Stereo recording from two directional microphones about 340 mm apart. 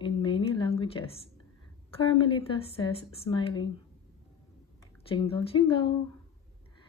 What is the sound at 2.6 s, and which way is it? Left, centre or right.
Speech, centre.